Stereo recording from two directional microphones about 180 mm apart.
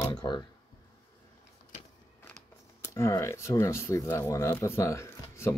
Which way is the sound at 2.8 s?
15° left (ahead or behind).